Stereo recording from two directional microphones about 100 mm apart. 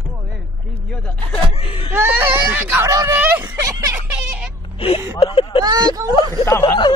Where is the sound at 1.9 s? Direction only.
20° right (ahead or behind).